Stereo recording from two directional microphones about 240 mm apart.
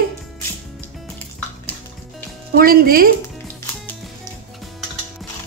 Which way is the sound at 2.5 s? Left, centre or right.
Right.